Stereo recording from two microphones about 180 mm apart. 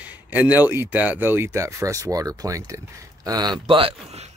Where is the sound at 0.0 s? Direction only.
10° right (ahead or behind).